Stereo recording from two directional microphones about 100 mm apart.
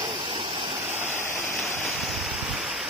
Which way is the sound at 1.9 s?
Centre (ahead or behind).